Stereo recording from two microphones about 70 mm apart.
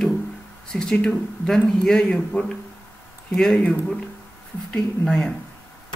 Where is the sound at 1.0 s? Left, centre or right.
Centre.